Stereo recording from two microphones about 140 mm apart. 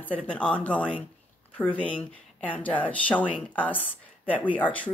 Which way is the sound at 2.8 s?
10° left (ahead or behind).